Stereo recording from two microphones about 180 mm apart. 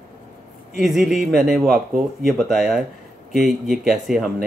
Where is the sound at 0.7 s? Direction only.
Centre (ahead or behind).